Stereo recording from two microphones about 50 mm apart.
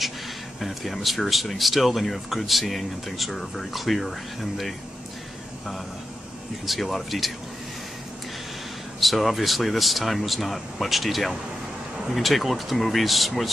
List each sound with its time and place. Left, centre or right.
0.6 s speech: centre
6.6 s speech: centre
9.0 s speech: centre